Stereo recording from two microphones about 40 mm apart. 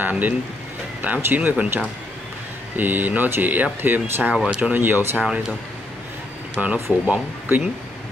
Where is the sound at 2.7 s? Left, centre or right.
Right.